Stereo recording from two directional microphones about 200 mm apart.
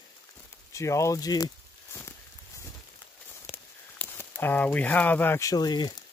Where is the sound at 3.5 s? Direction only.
10° left (ahead or behind).